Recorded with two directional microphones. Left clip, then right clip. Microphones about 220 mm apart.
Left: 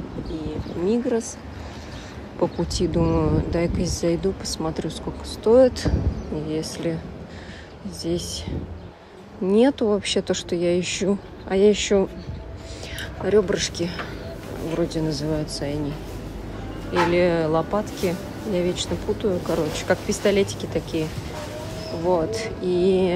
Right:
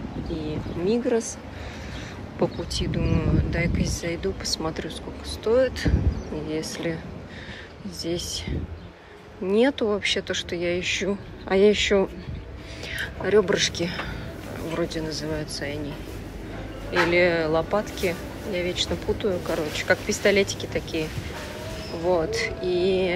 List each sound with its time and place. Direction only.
0.8 s a woman's voice: 10° left (ahead or behind)
2.5 s a woman's voice: 20° left (ahead or behind)
8.0 s a woman's voice: 15° left (ahead or behind)
9.5 s a woman's voice: 10° left (ahead or behind)
16.9 s a woman's voice: 15° left (ahead or behind)
22.0 s a woman's voice: 10° left (ahead or behind)